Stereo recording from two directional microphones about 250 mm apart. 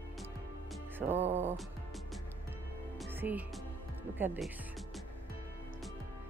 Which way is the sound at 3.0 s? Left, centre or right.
Centre.